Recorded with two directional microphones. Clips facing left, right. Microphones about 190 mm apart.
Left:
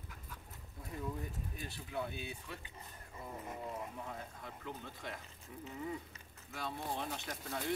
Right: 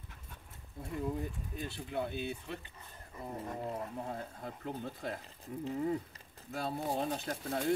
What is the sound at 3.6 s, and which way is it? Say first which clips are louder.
Speech: right 5 dB; 35° right (ahead or behind).